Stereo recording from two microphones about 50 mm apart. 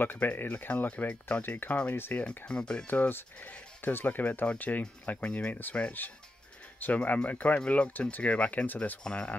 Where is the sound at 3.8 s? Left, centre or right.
Left.